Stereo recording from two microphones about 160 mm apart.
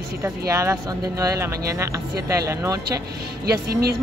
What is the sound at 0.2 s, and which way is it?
Speech, 15° right (ahead or behind).